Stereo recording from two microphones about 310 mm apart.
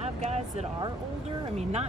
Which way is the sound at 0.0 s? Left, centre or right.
Right.